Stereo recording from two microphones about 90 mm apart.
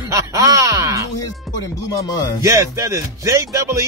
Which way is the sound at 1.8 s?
40° left (ahead or behind).